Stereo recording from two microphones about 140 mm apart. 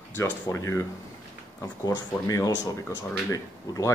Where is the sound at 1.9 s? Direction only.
25° left (ahead or behind).